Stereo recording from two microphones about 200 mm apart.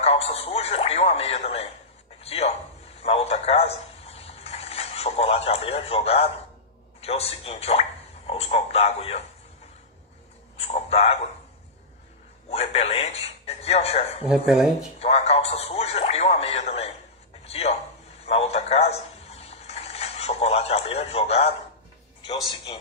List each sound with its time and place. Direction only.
0.3 s radio: 30° left (ahead or behind)
2.2 s a sound: 30° left (ahead or behind)
7.0 s speech: 30° left (ahead or behind)
10.6 s a man's voice: 30° left (ahead or behind)
12.4 s speech: 30° left (ahead or behind)
14.2 s speech: 5° right (ahead or behind)
15.0 s speech: 30° left (ahead or behind)
17.5 s a sound: 30° left (ahead or behind)
22.2 s a man's voice: 25° left (ahead or behind)